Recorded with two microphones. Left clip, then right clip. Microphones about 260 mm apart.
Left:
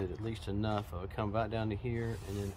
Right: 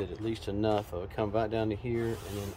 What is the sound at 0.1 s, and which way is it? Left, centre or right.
Speech, centre.